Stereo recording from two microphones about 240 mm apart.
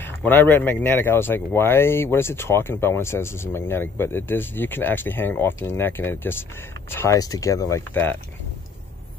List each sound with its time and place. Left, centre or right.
0.0 s speech: centre